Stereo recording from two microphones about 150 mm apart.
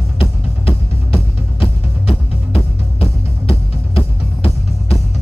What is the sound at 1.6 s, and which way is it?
Music, 40° left (ahead or behind).